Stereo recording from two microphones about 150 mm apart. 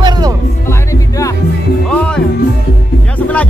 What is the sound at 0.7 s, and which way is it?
Music, 20° left (ahead or behind).